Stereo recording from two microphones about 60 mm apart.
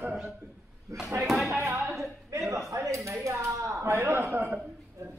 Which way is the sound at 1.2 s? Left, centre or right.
Centre.